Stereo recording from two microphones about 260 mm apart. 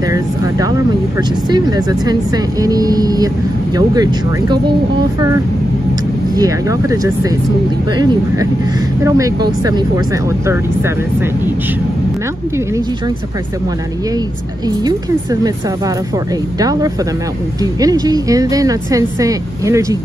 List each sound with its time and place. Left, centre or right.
0.1 s vehicle: centre
1.5 s speech: centre
6.3 s speech: centre
16.5 s speech: centre